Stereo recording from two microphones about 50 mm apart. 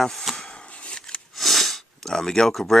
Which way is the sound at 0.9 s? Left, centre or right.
Centre.